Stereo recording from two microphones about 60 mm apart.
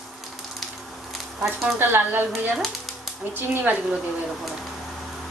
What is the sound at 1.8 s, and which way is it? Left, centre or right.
Speech, right.